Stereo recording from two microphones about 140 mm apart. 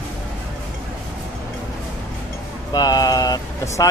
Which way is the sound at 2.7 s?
25° left (ahead or behind).